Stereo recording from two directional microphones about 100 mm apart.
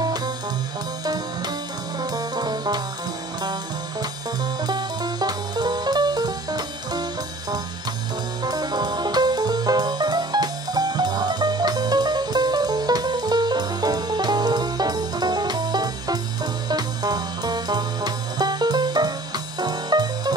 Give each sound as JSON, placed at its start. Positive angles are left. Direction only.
{"t": 0.0, "sound": "music", "side_deg": -40}
{"t": 2.0, "sound": "brass instrument", "side_deg": -40}
{"t": 4.6, "sound": "music", "side_deg": -45}
{"t": 8.5, "sound": "music", "side_deg": -45}